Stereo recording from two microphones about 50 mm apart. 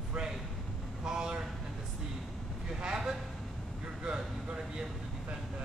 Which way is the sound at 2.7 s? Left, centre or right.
Centre.